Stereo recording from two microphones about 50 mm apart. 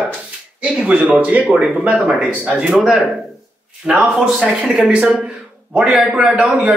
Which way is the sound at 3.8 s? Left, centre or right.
Centre.